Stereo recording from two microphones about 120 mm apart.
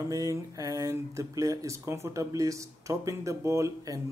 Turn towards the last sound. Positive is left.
turn(degrees=-25)  # may be behind; listen again after turning